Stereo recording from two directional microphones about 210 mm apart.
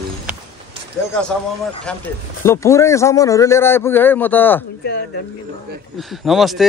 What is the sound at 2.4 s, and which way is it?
A man's voice, 15° left (ahead or behind).